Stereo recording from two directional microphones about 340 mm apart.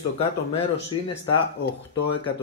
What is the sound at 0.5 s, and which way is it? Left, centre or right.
Speech, centre.